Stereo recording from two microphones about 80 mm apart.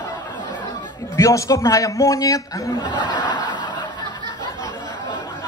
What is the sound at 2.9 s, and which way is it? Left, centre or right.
Snicker, right.